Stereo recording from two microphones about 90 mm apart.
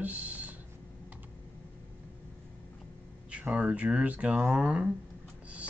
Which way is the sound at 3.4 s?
15° right (ahead or behind).